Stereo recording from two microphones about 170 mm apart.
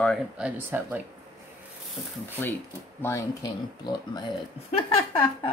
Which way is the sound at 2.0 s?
5° left (ahead or behind).